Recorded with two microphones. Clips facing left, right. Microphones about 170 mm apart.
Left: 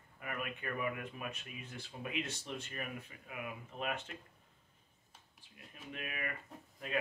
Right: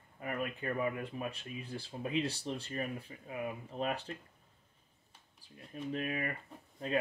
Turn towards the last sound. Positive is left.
turn(degrees=-30)  # may be behind; listen again after turning